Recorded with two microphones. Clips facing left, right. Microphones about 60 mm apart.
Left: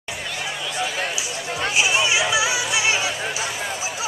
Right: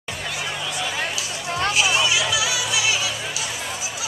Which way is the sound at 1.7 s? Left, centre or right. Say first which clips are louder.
Left 1 dB; left.